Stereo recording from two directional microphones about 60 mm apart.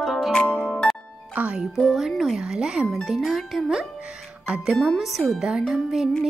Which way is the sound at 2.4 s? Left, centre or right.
Centre.